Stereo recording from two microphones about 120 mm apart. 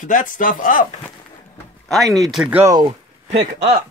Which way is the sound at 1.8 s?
Centre (ahead or behind).